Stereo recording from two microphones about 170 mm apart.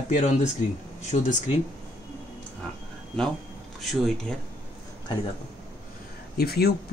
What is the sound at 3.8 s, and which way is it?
Speech, centre (ahead or behind).